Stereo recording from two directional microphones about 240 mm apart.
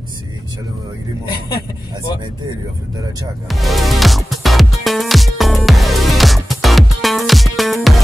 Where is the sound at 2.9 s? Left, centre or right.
Centre.